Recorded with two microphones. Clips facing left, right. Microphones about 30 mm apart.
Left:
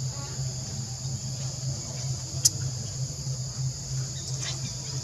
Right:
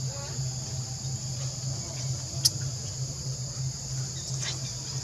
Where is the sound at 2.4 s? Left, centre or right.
Right.